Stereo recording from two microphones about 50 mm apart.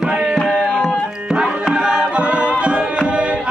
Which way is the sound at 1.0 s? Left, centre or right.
Centre.